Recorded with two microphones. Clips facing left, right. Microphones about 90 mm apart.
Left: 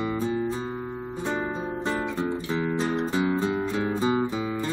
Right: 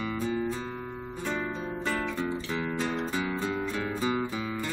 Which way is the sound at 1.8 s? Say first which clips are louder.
Left 3 dB; 20° left (ahead or behind).